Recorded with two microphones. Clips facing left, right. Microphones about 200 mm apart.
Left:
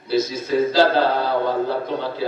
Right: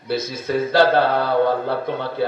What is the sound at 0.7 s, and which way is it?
Speech, 60° right (ahead or behind).